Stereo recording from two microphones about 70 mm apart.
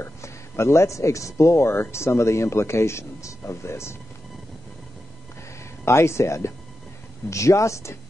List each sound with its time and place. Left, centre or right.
0.0 s speech: left
5.9 s speech: left